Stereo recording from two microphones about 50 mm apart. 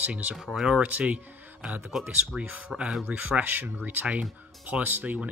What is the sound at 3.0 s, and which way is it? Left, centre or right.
Speech, right.